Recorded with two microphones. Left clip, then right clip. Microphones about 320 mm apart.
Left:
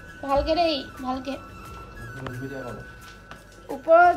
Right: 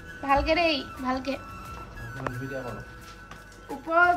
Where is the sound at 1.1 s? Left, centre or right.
Centre.